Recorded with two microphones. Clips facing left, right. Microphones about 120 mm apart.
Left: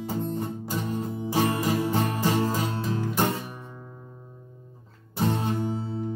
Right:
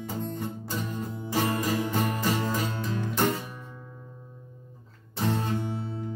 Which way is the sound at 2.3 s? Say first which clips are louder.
Left 3 dB; 35° left (ahead or behind).